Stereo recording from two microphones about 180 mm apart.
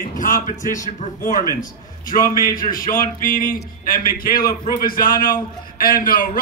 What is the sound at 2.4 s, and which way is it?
A man's voice, 50° left (ahead or behind).